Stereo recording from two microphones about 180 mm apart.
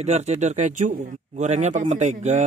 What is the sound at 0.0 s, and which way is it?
Speech, 40° right (ahead or behind).